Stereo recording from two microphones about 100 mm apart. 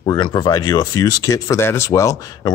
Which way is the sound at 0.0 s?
45° left (ahead or behind).